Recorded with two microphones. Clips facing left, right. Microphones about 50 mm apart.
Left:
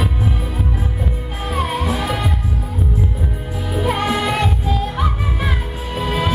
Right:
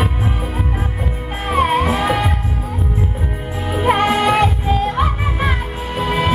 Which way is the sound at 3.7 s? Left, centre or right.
Right.